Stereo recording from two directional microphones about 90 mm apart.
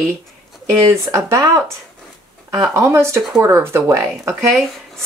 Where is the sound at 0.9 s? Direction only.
35° right (ahead or behind).